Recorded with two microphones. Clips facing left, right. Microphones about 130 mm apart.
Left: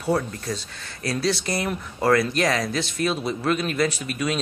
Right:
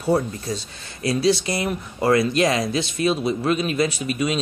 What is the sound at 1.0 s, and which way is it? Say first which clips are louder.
Speech: right 5 dB; 20° right (ahead or behind).